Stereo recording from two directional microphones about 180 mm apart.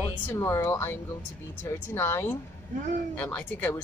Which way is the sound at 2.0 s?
15° left (ahead or behind).